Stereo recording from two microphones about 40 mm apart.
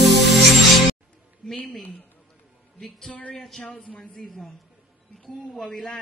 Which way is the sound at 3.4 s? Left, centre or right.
Centre.